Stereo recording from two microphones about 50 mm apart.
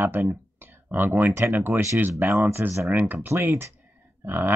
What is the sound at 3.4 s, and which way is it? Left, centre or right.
Speech, right.